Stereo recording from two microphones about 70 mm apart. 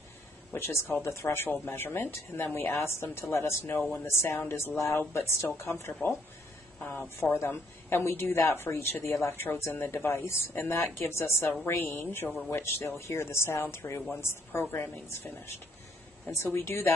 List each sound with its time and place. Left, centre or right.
0.5 s a woman's voice: left
6.8 s a sound: left
7.3 s a woman's voice: left